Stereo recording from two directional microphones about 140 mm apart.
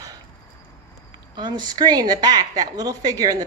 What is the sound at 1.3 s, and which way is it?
A woman's voice, 30° right (ahead or behind).